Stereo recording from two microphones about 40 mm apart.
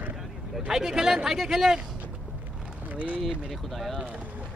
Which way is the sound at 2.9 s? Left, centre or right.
Right.